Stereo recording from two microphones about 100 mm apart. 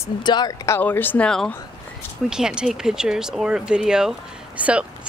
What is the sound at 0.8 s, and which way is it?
Speech, 20° left (ahead or behind).